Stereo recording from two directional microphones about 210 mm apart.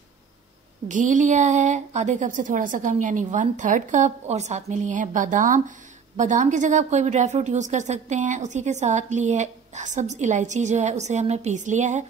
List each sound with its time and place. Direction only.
0.8 s a woman's voice: 35° right (ahead or behind)